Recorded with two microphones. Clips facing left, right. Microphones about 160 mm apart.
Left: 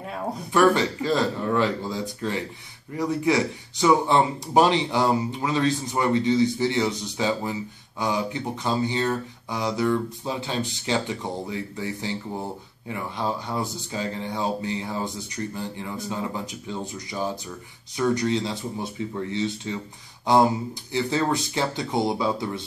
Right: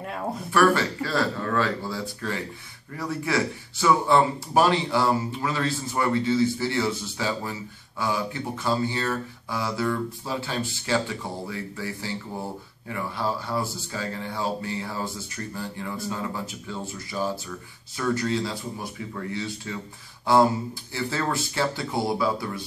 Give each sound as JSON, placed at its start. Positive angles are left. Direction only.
{"t": 0.5, "sound": "speech", "side_deg": 20}